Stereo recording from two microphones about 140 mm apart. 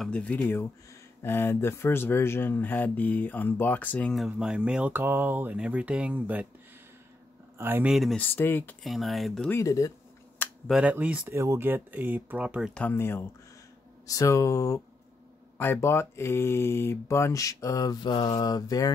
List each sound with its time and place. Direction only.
0.0 s speech: 10° left (ahead or behind)
4.3 s speech: 5° right (ahead or behind)
7.5 s speech: 15° right (ahead or behind)
7.9 s speech: centre (ahead or behind)
8.2 s speech: 15° left (ahead or behind)
8.8 s speech: centre (ahead or behind)
9.5 s speech: 25° left (ahead or behind)
10.7 s speech: 10° right (ahead or behind)
12.7 s speech: 15° left (ahead or behind)